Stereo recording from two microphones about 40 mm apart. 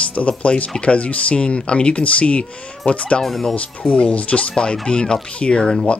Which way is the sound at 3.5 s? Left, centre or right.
Left.